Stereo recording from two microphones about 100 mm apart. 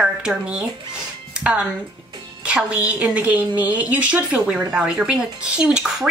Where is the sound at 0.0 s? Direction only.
10° right (ahead or behind).